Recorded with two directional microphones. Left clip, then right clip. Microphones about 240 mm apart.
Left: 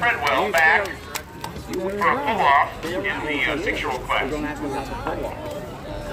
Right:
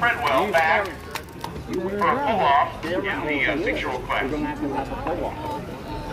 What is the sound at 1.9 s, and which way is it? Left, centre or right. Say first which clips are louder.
Speech: even; centre.